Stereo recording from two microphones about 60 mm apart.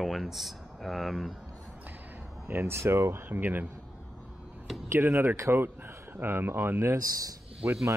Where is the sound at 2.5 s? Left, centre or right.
Right.